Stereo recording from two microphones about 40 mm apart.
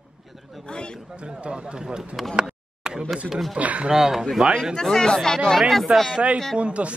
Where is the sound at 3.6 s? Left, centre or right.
Right.